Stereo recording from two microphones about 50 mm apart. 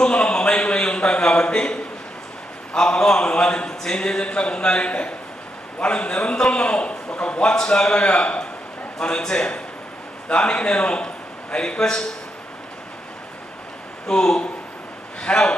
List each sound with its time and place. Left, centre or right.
0.0 s a sound: centre
2.7 s a man's voice: centre
14.0 s a man's voice: centre
15.2 s a man's voice: left